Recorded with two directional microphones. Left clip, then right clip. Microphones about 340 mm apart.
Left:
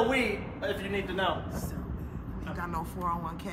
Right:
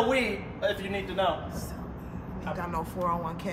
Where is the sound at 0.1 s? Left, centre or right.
Right.